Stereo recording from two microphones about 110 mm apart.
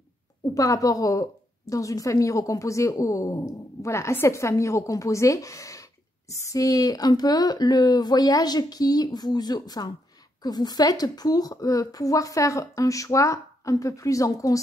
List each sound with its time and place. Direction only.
0.6 s a woman's voice: 30° left (ahead or behind)